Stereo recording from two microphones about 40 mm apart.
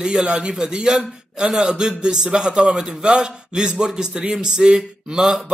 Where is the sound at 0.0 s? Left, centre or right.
Centre.